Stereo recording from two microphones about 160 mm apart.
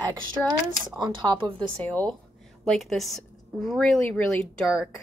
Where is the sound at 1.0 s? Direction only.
25° right (ahead or behind).